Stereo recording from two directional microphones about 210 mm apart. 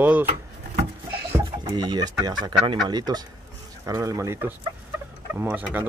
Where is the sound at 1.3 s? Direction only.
15° right (ahead or behind).